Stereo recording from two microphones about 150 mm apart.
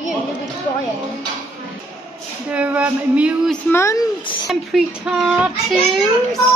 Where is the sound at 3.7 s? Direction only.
20° left (ahead or behind).